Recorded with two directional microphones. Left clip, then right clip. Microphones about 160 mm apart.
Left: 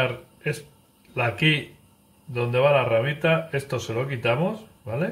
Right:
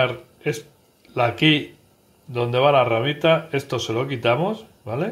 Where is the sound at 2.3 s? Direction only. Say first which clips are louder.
Right 3 dB; 35° right (ahead or behind).